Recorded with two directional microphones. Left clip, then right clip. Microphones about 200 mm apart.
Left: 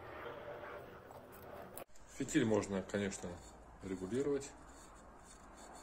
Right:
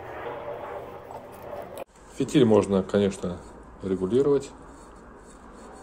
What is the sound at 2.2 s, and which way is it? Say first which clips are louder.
Speech: right 15 dB; 20° right (ahead or behind).